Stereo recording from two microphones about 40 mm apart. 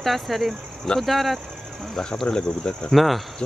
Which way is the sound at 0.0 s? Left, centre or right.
Centre.